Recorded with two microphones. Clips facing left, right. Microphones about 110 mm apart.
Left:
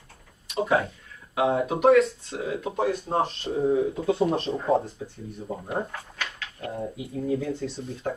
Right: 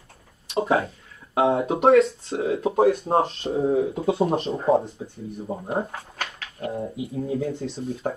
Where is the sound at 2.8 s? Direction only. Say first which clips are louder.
Right 4 dB; 60° right (ahead or behind).